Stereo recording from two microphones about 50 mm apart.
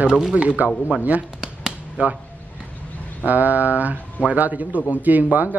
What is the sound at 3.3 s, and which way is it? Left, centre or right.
Speech, right.